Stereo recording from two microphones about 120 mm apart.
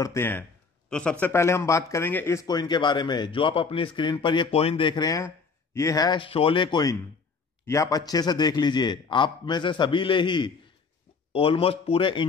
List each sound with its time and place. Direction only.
0.0 s speech: 20° left (ahead or behind)
1.2 s speech: 20° left (ahead or behind)
2.4 s a man's voice: 35° left (ahead or behind)
7.6 s a man's voice: 25° left (ahead or behind); by 10.5 s 40° left (ahead or behind)
11.3 s speech: 50° left (ahead or behind)